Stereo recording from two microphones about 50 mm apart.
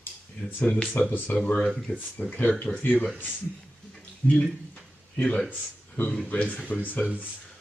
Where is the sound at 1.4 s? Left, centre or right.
Left.